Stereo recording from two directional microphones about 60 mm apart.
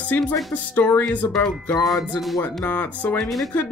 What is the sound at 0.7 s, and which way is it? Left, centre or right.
Music, left.